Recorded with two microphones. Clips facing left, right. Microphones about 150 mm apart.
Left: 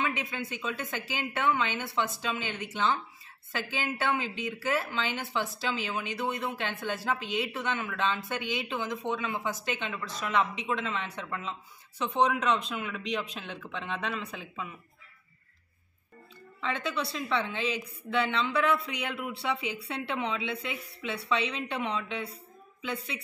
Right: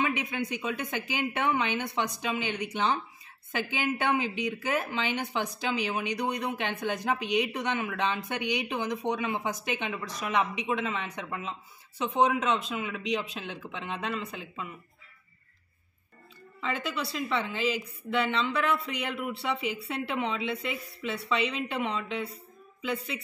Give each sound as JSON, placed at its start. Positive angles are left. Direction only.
{"t": 0.0, "sound": "a woman's voice", "side_deg": -15}
{"t": 16.6, "sound": "a woman's voice", "side_deg": -5}